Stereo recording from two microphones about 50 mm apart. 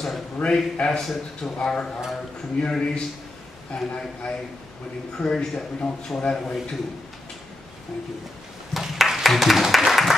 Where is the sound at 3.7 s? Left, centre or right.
Centre.